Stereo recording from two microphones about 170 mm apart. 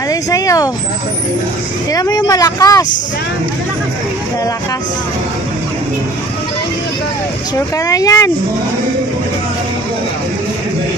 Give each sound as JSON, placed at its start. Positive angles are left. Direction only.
{"t": 0.1, "sound": "speech", "side_deg": 20}
{"t": 1.9, "sound": "speech", "side_deg": 20}
{"t": 7.5, "sound": "speech", "side_deg": 20}